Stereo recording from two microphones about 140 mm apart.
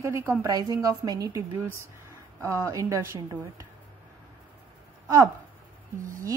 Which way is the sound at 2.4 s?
20° right (ahead or behind).